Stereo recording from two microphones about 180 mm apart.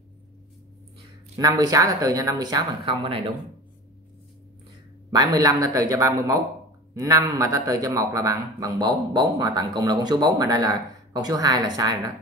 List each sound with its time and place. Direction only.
1.3 s a man's voice: 20° right (ahead or behind)
5.1 s a man's voice: 20° right (ahead or behind)